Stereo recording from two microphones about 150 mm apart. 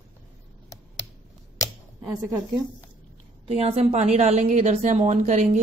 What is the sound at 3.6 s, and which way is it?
Speech, 45° right (ahead or behind).